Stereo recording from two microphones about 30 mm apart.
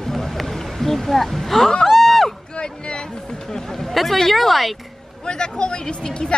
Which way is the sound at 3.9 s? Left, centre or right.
Centre.